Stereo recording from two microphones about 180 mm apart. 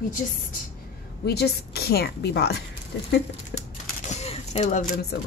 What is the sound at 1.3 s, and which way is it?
A woman's voice, 65° left (ahead or behind).